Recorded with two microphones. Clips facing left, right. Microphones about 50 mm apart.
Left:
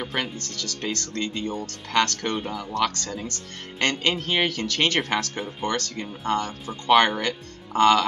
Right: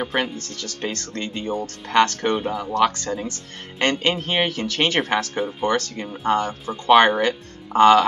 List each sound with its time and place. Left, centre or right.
0.0 s speech: centre